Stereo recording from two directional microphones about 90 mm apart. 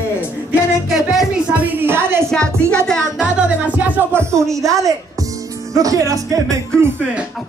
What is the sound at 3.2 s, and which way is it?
Music, 15° right (ahead or behind).